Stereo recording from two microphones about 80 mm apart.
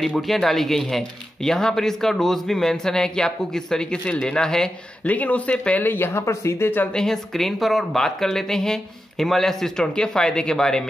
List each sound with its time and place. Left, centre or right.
0.0 s speech: centre
5.0 s speech: centre
5.9 s speech: left
6.9 s speech: centre